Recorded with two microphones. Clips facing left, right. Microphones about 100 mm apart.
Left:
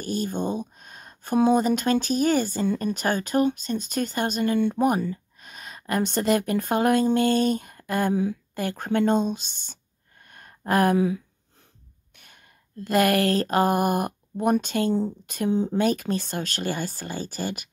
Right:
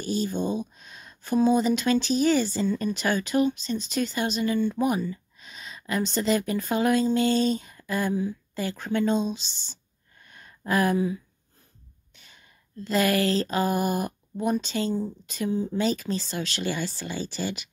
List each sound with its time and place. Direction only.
0.0 s speech: 50° left (ahead or behind)
10.2 s a sound: 55° left (ahead or behind)
11.0 s speech: 90° left
12.8 s speech: 60° left (ahead or behind)